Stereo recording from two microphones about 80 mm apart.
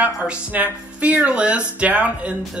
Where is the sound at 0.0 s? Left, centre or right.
Centre.